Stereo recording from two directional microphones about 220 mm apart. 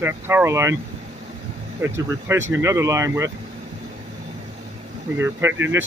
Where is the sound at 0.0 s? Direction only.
10° right (ahead or behind).